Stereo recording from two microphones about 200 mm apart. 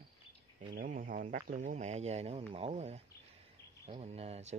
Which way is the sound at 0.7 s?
45° right (ahead or behind).